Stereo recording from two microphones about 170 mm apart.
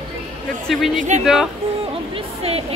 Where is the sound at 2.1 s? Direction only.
35° right (ahead or behind).